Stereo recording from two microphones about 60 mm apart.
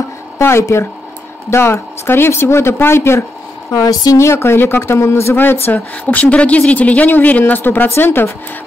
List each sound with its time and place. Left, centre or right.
0.4 s speech: left
3.7 s speech: left
4.2 s speech: left
5.3 s speech: left